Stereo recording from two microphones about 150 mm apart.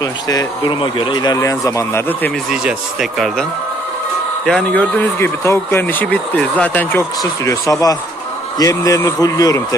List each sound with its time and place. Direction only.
0.0 s speech: 25° left (ahead or behind)
2.5 s speech: 5° right (ahead or behind)
4.5 s speech: 5° left (ahead or behind); by 9.8 s 25° left (ahead or behind)